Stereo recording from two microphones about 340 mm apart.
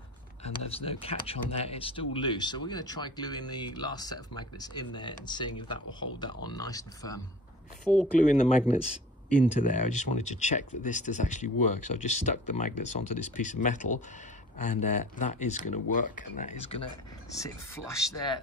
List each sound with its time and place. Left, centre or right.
0.4 s speech: centre
9.3 s speech: left
11.4 s speech: left
13.2 s speech: left
17.4 s speech: centre